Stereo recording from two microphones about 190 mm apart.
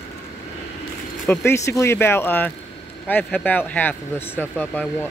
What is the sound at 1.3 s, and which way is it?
Speech, 10° left (ahead or behind).